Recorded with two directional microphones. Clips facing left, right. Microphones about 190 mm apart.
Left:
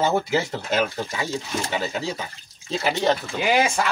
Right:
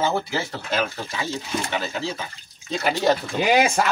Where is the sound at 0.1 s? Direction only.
15° left (ahead or behind).